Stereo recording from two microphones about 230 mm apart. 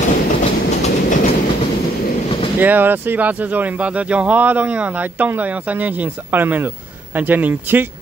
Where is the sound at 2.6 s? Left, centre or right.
Centre.